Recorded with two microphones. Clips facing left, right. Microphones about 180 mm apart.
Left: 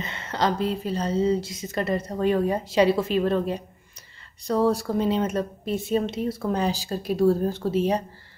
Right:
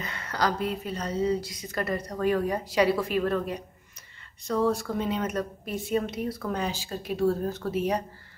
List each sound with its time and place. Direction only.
0.0 s a woman's voice: 25° left (ahead or behind)